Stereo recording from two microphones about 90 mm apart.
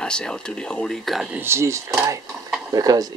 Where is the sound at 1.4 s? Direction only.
30° right (ahead or behind).